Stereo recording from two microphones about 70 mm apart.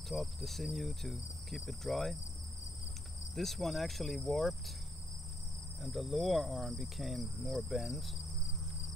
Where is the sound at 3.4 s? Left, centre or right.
Centre.